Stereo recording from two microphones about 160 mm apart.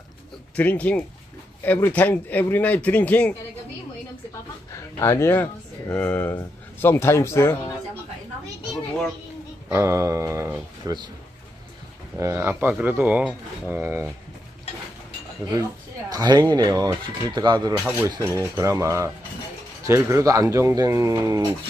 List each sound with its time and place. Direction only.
0.6 s speech: 10° left (ahead or behind)
4.9 s speech: 15° left (ahead or behind)
9.7 s speech: 15° right (ahead or behind)
12.2 s speech: 15° right (ahead or behind)
16.1 s speech: 25° right (ahead or behind)
17.7 s cutlery: 5° right (ahead or behind)
18.0 s speech: 20° right (ahead or behind)